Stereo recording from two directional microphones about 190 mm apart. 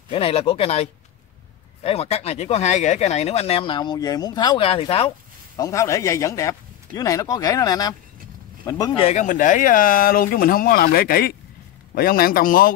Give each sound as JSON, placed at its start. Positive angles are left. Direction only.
{"t": 0.1, "sound": "speech", "side_deg": 30}
{"t": 5.6, "sound": "speech", "side_deg": 15}
{"t": 9.0, "sound": "speech", "side_deg": 40}